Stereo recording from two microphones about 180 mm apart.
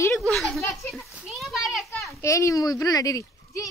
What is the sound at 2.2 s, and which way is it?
A child's voice, 15° left (ahead or behind).